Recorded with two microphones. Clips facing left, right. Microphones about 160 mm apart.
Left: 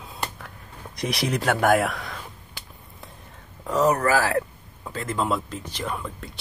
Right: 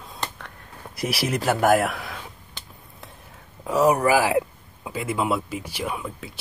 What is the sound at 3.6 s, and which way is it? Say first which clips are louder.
Speech: right 2 dB; 10° right (ahead or behind).